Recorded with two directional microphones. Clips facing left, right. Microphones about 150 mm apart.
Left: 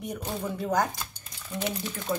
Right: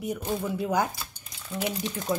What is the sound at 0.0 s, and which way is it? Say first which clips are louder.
Speech: right 3 dB; 5° right (ahead or behind).